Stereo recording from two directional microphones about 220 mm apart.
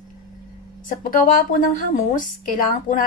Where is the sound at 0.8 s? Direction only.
35° left (ahead or behind).